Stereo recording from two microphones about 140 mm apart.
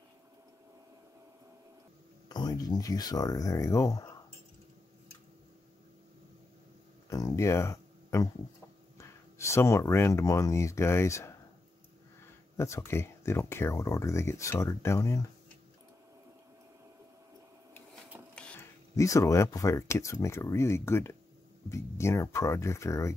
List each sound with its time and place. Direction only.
2.2 s speech: 30° left (ahead or behind)
7.1 s a sound: 25° left (ahead or behind)
8.9 s speech: 20° left (ahead or behind)
12.5 s speech: 20° left (ahead or behind)
18.3 s a sound: 10° left (ahead or behind)
18.9 s speech: 25° left (ahead or behind)